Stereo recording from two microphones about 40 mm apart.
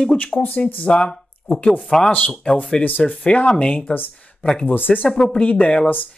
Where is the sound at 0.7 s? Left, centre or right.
Left.